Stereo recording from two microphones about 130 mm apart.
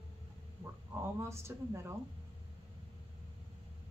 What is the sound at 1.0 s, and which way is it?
Speech, 20° right (ahead or behind).